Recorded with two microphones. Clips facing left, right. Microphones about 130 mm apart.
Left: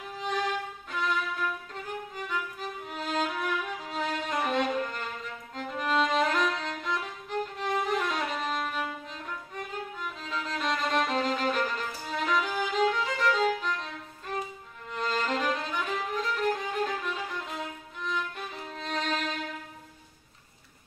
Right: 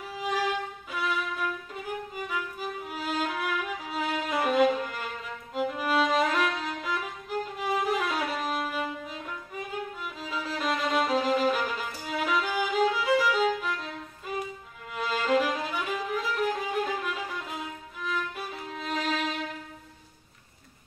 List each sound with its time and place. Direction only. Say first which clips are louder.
0.1 s violin: right 2 dB; 5° right (ahead or behind)
1.0 s music: even; 5° right (ahead or behind)
2.1 s music: right 1 dB; 5° right (ahead or behind)
5.5 s violin: right 3 dB; 5° right (ahead or behind)
10.2 s music: right 2 dB; 5° right (ahead or behind)
15.0 s violin: right 4 dB; 5° right (ahead or behind)